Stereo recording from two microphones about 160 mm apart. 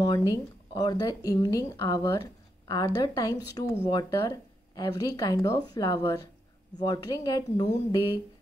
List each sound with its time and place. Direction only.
0.3 s speech: 25° left (ahead or behind)